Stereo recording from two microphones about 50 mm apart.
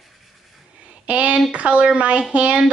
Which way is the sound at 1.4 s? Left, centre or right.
Right.